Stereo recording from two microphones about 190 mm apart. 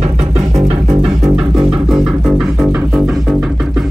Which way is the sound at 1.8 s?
Centre (ahead or behind).